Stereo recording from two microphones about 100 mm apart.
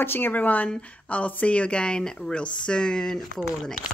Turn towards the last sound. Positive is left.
turn(degrees=5)  # may be behind; listen again after turning